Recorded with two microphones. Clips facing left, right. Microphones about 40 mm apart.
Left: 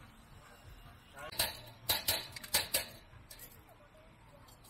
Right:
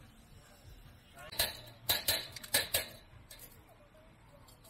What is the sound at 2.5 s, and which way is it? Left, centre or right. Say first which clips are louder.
Dishes: right 2 dB; right.